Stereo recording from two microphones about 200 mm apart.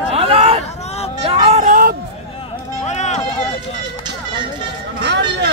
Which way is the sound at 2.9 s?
35° left (ahead or behind).